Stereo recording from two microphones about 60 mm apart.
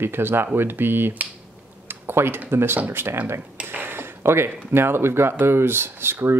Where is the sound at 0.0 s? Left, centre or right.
Right.